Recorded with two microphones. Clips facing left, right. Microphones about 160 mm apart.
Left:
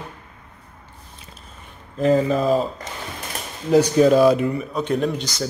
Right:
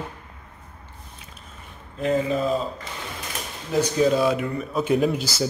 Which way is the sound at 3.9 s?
55° left (ahead or behind).